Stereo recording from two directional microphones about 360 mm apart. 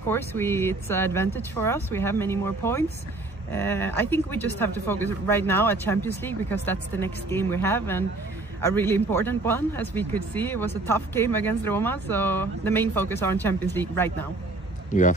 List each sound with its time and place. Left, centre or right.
0.1 s speech: centre
14.9 s a man's voice: left